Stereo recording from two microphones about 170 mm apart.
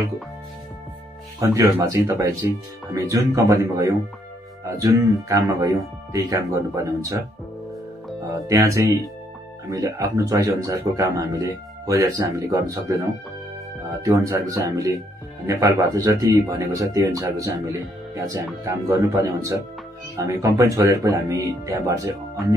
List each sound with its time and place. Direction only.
1.4 s speech: 20° right (ahead or behind)
8.3 s speech: 20° right (ahead or behind)
14.0 s speech: 20° right (ahead or behind)